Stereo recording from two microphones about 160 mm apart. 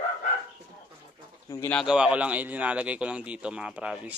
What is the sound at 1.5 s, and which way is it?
Speech, 15° left (ahead or behind).